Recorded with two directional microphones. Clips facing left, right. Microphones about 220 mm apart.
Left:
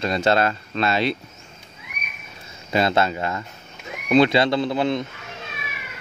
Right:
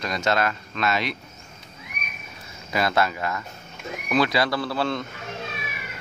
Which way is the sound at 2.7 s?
25° left (ahead or behind).